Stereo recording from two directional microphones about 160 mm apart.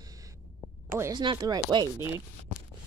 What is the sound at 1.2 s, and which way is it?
Speech, 25° right (ahead or behind).